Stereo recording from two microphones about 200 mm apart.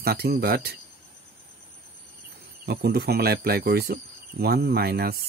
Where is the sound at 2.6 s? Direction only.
55° right (ahead or behind).